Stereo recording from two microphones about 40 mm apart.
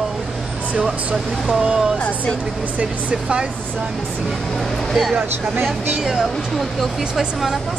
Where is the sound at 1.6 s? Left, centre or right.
Centre.